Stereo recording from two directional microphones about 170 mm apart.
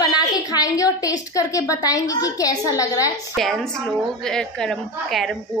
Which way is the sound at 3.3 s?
Centre (ahead or behind).